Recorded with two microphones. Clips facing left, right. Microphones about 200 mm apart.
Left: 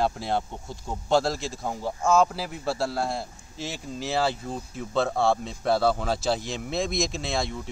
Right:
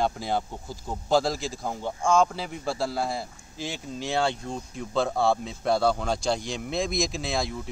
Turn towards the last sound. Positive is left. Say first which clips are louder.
# even
turn(degrees=0)  # may be behind; listen again after turning